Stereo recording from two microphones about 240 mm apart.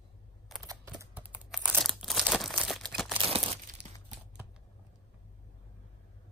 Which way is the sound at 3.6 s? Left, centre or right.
Right.